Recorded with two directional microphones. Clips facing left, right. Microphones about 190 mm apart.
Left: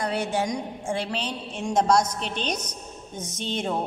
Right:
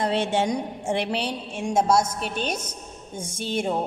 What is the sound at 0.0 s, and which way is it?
Speech, 25° right (ahead or behind).